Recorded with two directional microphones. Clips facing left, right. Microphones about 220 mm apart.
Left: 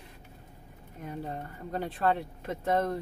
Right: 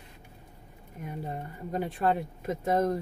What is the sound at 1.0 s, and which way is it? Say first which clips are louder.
Speech: even; 10° right (ahead or behind).